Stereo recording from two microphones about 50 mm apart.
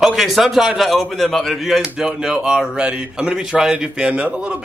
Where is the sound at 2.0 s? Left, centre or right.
Centre.